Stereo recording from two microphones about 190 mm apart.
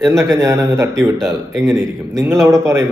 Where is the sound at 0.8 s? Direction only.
15° right (ahead or behind).